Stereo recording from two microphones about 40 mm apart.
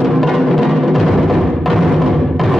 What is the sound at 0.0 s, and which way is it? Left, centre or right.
Music, centre.